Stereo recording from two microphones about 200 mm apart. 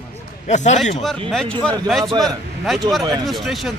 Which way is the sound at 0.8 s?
Centre (ahead or behind).